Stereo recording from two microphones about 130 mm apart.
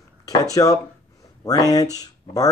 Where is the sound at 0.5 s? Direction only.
25° left (ahead or behind).